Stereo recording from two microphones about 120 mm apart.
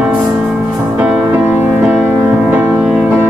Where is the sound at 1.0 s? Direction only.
10° right (ahead or behind).